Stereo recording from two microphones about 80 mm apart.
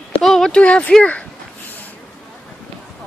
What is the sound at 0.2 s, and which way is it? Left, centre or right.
Speech, centre.